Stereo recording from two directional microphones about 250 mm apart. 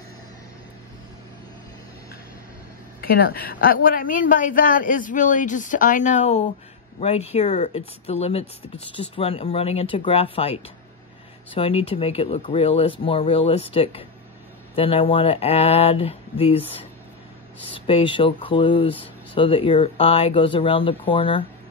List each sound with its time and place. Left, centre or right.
3.0 s speech: left
17.6 s speech: left